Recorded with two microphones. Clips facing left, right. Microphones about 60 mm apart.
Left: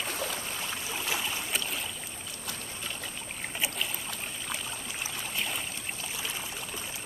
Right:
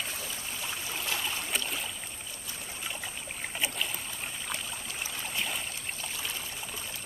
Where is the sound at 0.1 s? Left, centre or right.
Left.